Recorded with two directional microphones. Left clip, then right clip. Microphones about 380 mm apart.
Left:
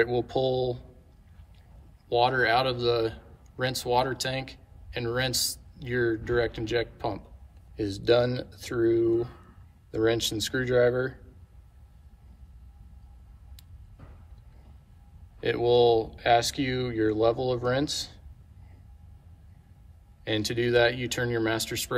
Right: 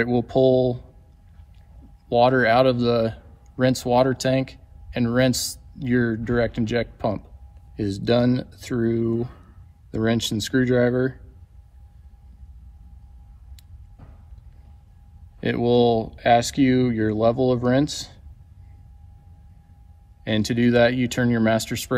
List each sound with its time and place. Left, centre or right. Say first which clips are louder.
0.0 s speech: right 6 dB; centre
2.0 s speech: right 6 dB; centre
15.4 s speech: right 2 dB; centre
20.2 s speech: right 5 dB; centre